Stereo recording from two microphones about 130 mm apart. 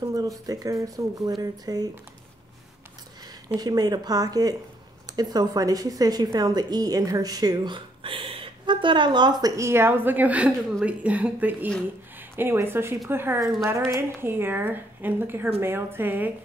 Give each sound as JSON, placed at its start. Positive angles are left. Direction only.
{"t": 0.0, "sound": "a woman's voice", "side_deg": -30}
{"t": 3.4, "sound": "a woman's voice", "side_deg": -30}